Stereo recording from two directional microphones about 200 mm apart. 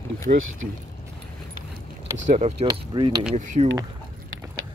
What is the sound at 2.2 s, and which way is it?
Speech, 35° right (ahead or behind).